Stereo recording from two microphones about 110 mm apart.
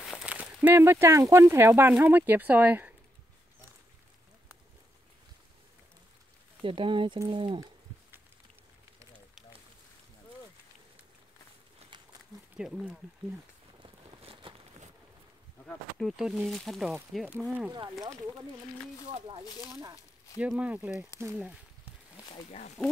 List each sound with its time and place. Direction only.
0.0 s a sound: 5° right (ahead or behind)
0.6 s speech: 20° right (ahead or behind)
6.6 s speech: 50° right (ahead or behind)
11.9 s a sound: 45° right (ahead or behind)
12.5 s speech: 5° right (ahead or behind)
14.2 s a sound: 50° right (ahead or behind)
15.6 s speech: 5° left (ahead or behind)
17.3 s speech: 15° right (ahead or behind)
19.4 s speech: 35° left (ahead or behind)
19.7 s speech: 30° right (ahead or behind)
20.3 s speech: 10° right (ahead or behind)
22.3 s speech: 80° left